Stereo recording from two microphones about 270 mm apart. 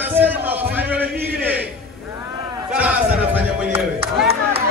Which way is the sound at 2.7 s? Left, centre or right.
Centre.